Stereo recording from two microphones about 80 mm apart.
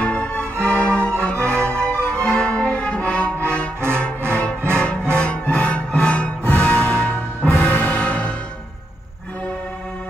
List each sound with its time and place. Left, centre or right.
0.0 s music: centre